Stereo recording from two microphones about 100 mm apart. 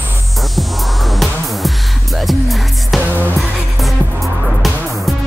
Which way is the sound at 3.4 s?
Centre (ahead or behind).